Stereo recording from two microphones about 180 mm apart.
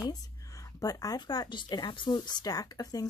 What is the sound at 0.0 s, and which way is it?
A woman's voice, 20° left (ahead or behind).